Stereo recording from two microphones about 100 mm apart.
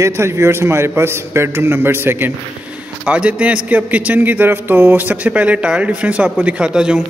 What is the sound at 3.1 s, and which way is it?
A man's voice, 10° right (ahead or behind).